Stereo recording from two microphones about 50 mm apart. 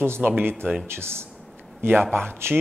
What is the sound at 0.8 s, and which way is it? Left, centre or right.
Speech, right.